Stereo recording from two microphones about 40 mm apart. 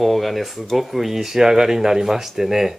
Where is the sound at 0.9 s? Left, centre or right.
Centre.